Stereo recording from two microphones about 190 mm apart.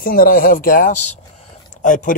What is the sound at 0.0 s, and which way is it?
A man's voice, 50° left (ahead or behind).